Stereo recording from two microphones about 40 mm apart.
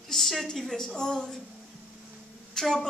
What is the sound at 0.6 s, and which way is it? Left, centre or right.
Speech, centre.